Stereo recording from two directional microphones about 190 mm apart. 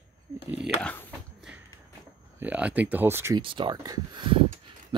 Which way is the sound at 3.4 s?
25° right (ahead or behind).